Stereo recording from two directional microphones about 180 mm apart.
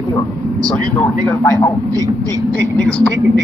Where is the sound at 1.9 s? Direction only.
20° right (ahead or behind).